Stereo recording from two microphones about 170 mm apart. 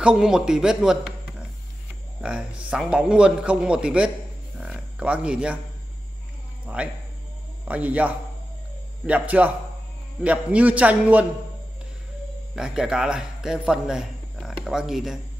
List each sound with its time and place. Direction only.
0.0 s a man's voice: 5° right (ahead or behind)
2.2 s a man's voice: 5° right (ahead or behind)
6.6 s a man's voice: 5° right (ahead or behind)
12.5 s a man's voice: 5° right (ahead or behind)